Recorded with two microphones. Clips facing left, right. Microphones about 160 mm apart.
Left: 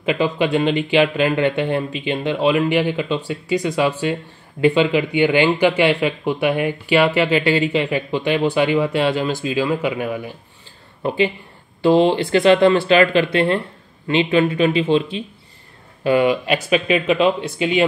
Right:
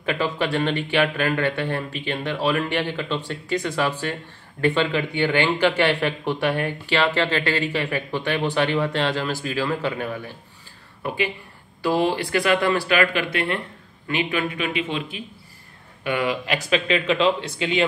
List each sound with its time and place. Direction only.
0.0 s speech: 15° left (ahead or behind)
11.0 s speech: 25° left (ahead or behind)
16.3 s speech: 20° left (ahead or behind)